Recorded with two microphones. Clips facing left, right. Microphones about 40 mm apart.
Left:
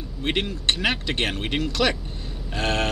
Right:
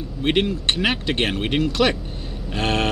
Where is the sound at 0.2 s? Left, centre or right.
Centre.